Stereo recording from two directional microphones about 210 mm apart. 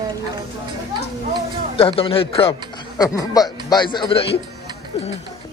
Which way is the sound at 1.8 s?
25° left (ahead or behind).